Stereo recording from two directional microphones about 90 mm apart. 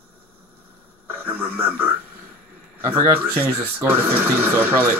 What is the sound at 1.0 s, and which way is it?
Television, 25° right (ahead or behind).